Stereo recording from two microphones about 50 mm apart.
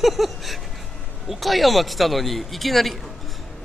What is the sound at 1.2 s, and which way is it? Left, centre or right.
Speech, centre.